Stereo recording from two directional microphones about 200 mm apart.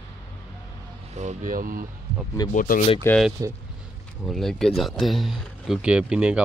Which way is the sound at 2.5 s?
40° left (ahead or behind).